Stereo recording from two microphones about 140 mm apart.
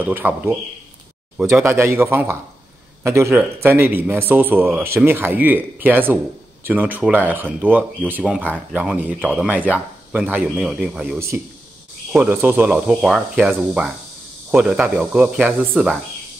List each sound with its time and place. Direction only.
0.0 s a man's voice: 10° right (ahead or behind)